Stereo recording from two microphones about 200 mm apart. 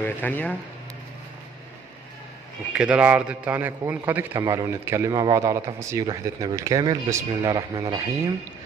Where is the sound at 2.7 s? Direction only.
5° right (ahead or behind).